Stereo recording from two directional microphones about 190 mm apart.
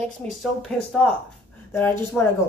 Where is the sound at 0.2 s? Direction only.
Centre (ahead or behind).